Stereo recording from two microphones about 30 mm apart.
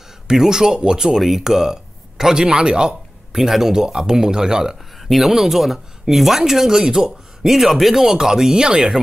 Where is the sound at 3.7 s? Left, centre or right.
Right.